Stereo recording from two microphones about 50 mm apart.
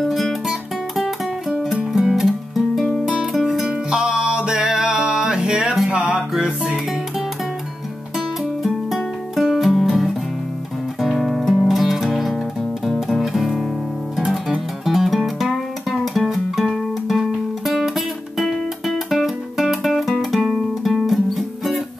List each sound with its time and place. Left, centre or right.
0.0 s music: centre
8.6 s music: centre
17.2 s music: centre